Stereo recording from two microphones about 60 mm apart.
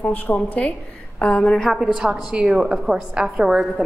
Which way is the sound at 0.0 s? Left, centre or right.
Left.